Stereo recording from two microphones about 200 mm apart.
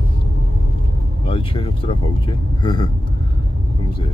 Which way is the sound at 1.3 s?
25° left (ahead or behind).